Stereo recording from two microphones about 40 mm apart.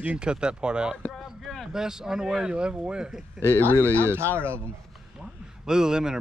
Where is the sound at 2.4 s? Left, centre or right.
Right.